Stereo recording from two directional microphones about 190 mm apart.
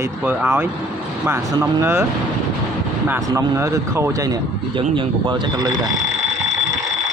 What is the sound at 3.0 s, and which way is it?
Speech, 10° right (ahead or behind).